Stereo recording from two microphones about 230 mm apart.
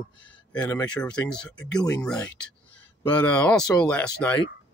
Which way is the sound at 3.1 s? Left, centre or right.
Centre.